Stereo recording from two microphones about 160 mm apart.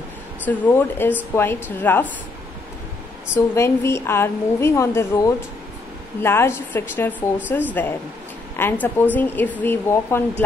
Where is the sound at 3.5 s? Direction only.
15° left (ahead or behind).